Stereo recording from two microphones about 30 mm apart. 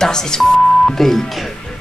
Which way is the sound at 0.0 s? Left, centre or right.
Left.